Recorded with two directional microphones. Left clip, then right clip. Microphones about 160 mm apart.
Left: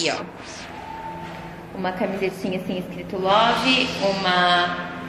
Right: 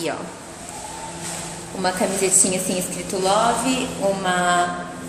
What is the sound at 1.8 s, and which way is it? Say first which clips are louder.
Speech: right 3 dB; 25° right (ahead or behind).